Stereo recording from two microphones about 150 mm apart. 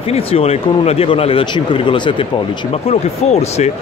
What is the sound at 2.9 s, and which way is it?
Speech, 45° left (ahead or behind).